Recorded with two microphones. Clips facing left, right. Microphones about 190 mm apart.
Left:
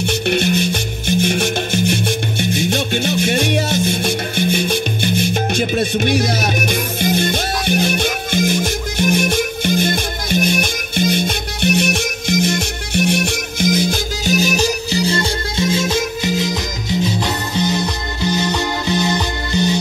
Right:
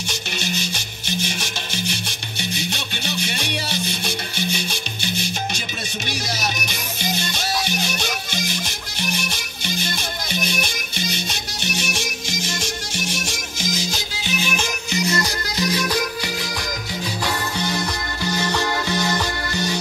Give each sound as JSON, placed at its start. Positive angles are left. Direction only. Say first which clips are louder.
{"t": 0.0, "sound": "music", "louder": "left 13 dB", "side_deg": 55}